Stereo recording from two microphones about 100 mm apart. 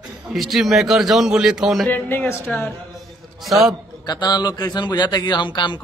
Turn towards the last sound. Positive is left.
turn(degrees=50)  # may be behind; listen again after turning